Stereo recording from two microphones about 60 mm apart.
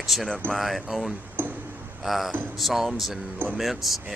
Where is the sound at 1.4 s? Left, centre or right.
Right.